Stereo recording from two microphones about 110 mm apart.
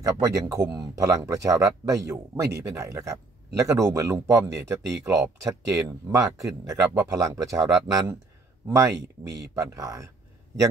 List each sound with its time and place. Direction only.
0.0 s speech: 30° right (ahead or behind)